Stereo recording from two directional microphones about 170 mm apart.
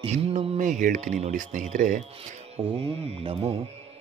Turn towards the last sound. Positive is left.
turn(degrees=-35)  # may be behind; listen again after turning